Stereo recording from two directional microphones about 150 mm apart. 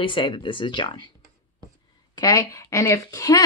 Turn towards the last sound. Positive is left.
turn(degrees=20)  # may be behind; listen again after turning